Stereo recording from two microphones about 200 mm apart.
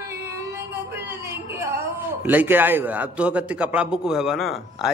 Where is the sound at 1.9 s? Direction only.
10° right (ahead or behind).